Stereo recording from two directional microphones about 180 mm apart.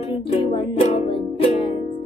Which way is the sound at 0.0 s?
30° left (ahead or behind).